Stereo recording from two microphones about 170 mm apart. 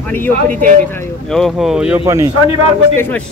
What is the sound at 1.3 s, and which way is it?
Speech, centre (ahead or behind).